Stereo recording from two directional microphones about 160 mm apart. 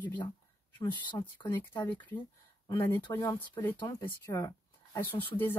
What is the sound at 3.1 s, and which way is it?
Speech, 15° left (ahead or behind).